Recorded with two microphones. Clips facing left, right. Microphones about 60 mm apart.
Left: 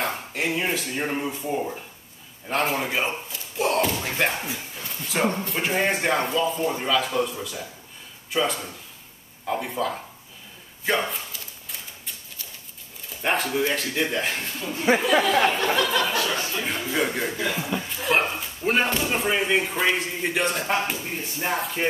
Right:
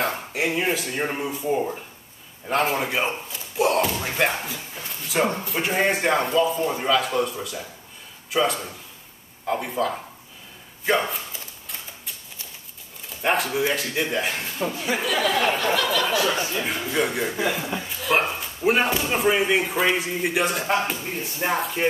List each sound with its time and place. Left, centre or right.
0.0 s speech: centre
4.7 s a sound: centre
5.4 s a man's voice: centre
13.2 s speech: centre
14.8 s speech: left
16.3 s speech: centre
16.6 s speech: centre